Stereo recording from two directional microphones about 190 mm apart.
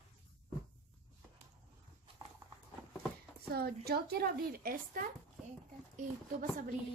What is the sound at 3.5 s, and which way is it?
A woman's voice, 55° right (ahead or behind).